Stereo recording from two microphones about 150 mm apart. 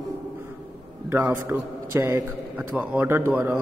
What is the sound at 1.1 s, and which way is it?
A man's voice, 15° right (ahead or behind).